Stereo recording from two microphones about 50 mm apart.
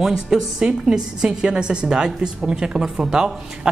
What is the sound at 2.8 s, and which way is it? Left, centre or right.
Speech, centre.